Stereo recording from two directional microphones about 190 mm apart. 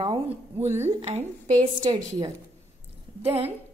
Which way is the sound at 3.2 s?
30° right (ahead or behind).